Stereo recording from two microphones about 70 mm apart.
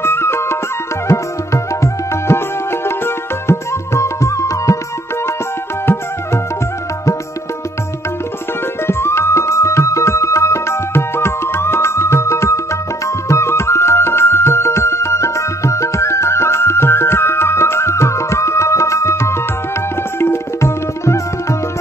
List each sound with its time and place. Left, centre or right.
0.0 s music: left
8.8 s music: left
20.2 s tabla: left